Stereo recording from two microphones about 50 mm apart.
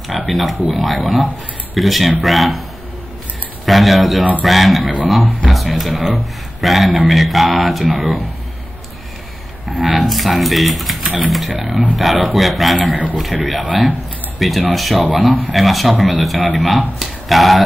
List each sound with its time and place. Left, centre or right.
0.3 s speech: centre
3.6 s speech: centre
9.7 s speech: centre
12.9 s a man's voice: right
13.2 s speech: centre